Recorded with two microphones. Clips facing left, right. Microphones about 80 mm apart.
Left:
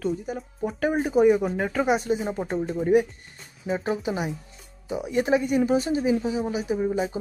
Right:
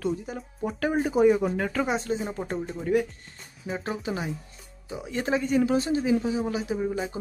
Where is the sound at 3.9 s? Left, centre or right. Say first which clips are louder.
Left 2 dB; centre.